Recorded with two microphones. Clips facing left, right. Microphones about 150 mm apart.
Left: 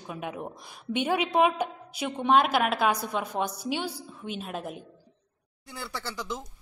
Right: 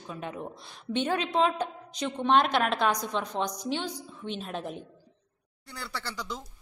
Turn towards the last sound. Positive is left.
turn(degrees=15)  # may be behind; listen again after turning